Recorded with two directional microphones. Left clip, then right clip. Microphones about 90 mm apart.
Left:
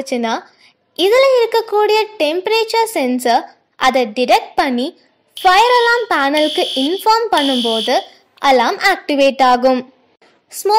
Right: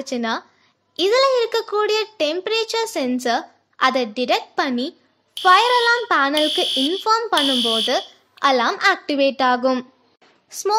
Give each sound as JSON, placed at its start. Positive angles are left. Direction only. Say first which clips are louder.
{"t": 0.0, "sound": "a child's voice", "louder": "left 5 dB", "side_deg": 40}
{"t": 5.8, "sound": "speech", "louder": "left 4 dB", "side_deg": 0}
{"t": 6.0, "sound": "a child's voice", "louder": "left 3 dB", "side_deg": 40}
{"t": 6.3, "sound": "speech", "louder": "left 4 dB", "side_deg": 0}
{"t": 7.1, "sound": "a child's voice", "louder": "left 7 dB", "side_deg": 35}
{"t": 7.3, "sound": "speech", "louder": "left 3 dB", "side_deg": 0}
{"t": 8.4, "sound": "a child's voice", "louder": "left 5 dB", "side_deg": 40}